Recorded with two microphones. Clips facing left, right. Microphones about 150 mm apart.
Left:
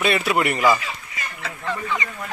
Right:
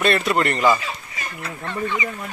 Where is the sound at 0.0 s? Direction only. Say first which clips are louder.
Right 1 dB; 5° left (ahead or behind).